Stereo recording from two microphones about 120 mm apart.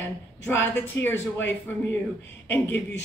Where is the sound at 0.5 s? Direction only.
15° left (ahead or behind).